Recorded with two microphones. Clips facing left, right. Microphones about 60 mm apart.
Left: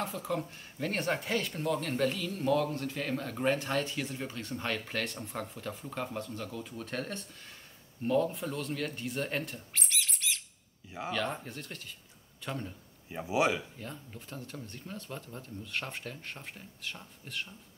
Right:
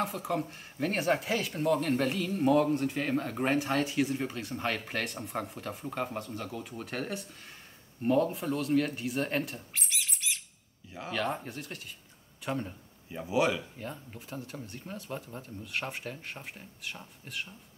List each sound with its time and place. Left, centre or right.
0.0 s speech: centre
3.5 s speech: centre
8.3 s speech: centre
13.1 s speech: left
13.7 s speech: centre